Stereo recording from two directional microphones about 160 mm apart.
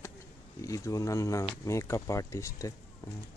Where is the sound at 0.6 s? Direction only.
20° left (ahead or behind).